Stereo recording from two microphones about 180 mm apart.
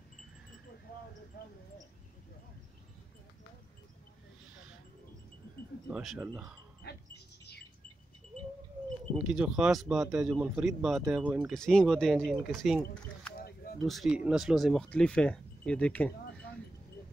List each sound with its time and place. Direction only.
5.9 s speech: 5° right (ahead or behind)
6.8 s dog: 65° left (ahead or behind)
9.1 s speech: 5° right (ahead or behind)